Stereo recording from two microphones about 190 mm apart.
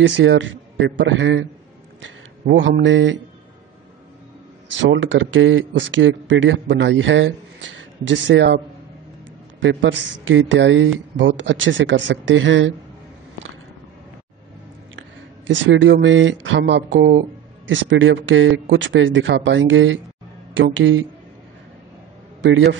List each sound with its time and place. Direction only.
0.0 s speech: 75° right (ahead or behind)
2.4 s speech: 75° right (ahead or behind)
4.6 s speech: 75° right (ahead or behind)
9.6 s speech: 75° right (ahead or behind)
15.4 s speech: 75° right (ahead or behind)
17.6 s speech: 80° right
22.4 s speech: 70° right (ahead or behind)